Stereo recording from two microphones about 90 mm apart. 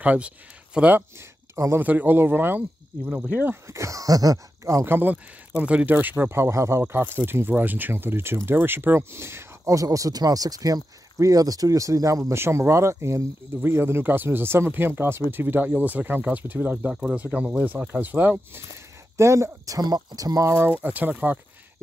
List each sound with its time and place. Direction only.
0.0 s speech: 15° right (ahead or behind)
1.5 s speech: 35° right (ahead or behind)
1.8 s speech: 20° right (ahead or behind)
3.7 s speech: 35° right (ahead or behind)
20.8 s speech: 20° right (ahead or behind)